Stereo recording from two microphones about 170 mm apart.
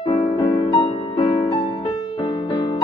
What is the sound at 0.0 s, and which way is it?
Music, 25° left (ahead or behind).